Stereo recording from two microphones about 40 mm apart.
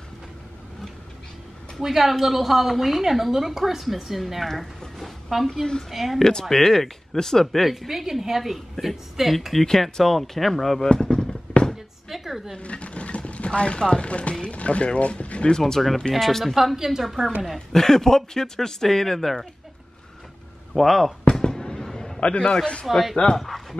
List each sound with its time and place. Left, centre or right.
1.8 s a woman's voice: centre
6.5 s speech: centre
7.6 s a woman's voice: centre
10.8 s a sound: centre
12.1 s a woman's voice: centre
12.5 s speech: left
15.6 s a woman's voice: centre
16.5 s a woman's voice: centre
17.7 s speech: centre
20.7 s speech: centre
21.3 s fireworks: centre
22.2 s a man's voice: left
22.8 s a woman's voice: centre